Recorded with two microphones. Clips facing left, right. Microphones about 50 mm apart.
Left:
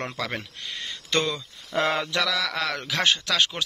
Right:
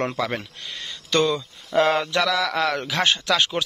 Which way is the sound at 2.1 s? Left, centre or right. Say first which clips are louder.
Right 4 dB; right.